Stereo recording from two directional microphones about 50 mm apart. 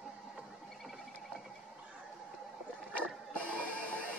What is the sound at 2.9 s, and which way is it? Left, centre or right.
Music, left.